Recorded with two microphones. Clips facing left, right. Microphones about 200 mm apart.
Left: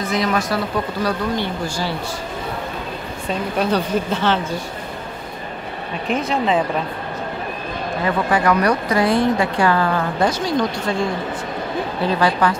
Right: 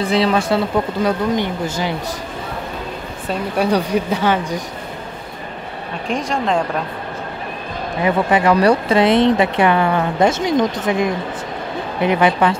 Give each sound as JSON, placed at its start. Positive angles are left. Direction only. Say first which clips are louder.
{"t": 0.0, "sound": "a woman's voice", "louder": "right 4 dB", "side_deg": -30}
{"t": 3.3, "sound": "speech", "louder": "right 2 dB", "side_deg": -10}
{"t": 6.0, "sound": "speech", "louder": "even", "side_deg": 5}
{"t": 8.0, "sound": "a woman's voice", "louder": "right 4 dB", "side_deg": -20}